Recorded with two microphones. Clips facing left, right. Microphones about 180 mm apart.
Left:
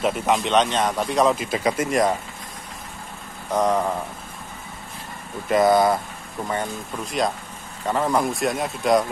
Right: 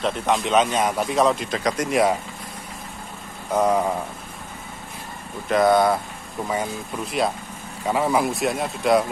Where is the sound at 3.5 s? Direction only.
10° right (ahead or behind).